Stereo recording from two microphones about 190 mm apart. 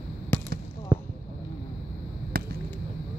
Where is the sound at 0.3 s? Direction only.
10° left (ahead or behind).